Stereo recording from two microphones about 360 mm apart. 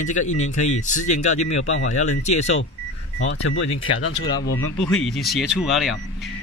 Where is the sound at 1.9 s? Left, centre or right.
Centre.